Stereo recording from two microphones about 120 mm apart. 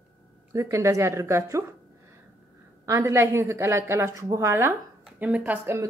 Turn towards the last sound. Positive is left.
turn(degrees=-20)  # may be behind; listen again after turning